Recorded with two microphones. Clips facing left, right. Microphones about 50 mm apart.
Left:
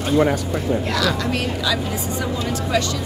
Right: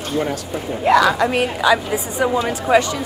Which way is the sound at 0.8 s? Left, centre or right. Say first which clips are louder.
Right 8 dB; right.